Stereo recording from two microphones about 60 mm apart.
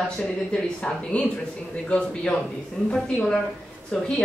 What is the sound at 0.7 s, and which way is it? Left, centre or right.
Speech, centre.